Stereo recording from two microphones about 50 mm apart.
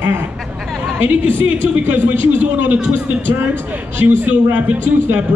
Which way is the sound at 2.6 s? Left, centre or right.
Right.